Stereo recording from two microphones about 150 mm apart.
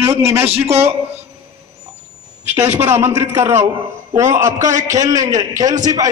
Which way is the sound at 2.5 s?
50° right (ahead or behind).